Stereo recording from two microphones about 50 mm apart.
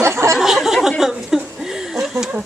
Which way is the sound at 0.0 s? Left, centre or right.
Right.